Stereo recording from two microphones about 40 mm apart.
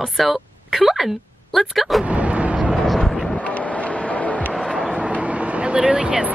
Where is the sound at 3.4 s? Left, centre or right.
Left.